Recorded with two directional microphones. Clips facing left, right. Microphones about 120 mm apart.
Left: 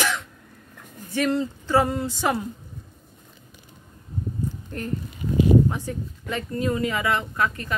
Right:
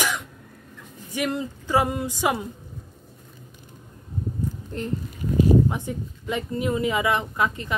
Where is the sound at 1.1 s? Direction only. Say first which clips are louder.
Left 3 dB; 15° right (ahead or behind).